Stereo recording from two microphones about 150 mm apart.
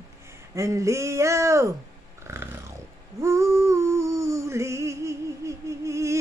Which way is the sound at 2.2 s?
15° right (ahead or behind).